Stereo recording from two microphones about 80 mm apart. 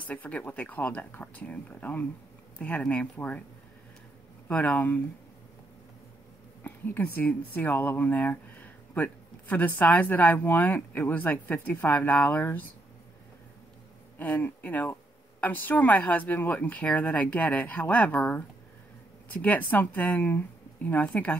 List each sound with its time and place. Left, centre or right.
0.1 s speech: centre
4.5 s speech: centre
6.6 s speech: left
14.1 s speech: left
19.4 s speech: left